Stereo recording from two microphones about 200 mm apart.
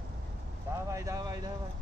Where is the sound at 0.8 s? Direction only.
15° right (ahead or behind).